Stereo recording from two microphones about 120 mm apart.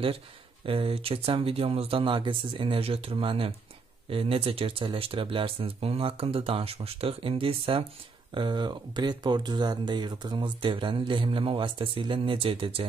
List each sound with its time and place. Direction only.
0.7 s speech: 50° right (ahead or behind)